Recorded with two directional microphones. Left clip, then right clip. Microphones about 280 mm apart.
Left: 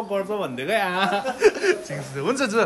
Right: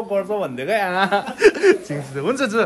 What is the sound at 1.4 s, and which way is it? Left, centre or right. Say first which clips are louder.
Speech: right 6 dB; right.